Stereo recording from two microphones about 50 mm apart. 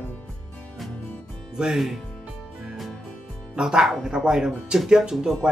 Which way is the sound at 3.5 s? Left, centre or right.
Centre.